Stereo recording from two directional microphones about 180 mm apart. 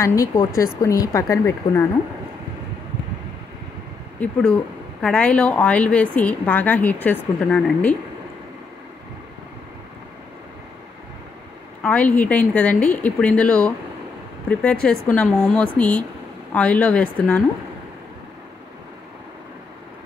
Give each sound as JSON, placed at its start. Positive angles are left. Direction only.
{"t": 0.0, "sound": "a woman's voice", "side_deg": 15}
{"t": 4.2, "sound": "a woman's voice", "side_deg": 5}
{"t": 11.8, "sound": "a woman's voice", "side_deg": 5}